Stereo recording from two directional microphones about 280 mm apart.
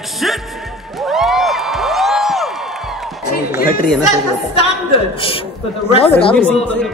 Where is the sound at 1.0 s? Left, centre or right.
Centre.